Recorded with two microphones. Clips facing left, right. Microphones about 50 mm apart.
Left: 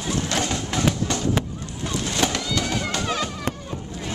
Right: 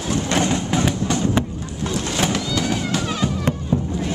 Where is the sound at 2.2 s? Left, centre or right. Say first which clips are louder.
Right 2 dB; centre.